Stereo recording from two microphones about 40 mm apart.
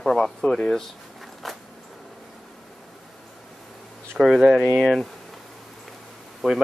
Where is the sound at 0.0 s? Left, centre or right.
Centre.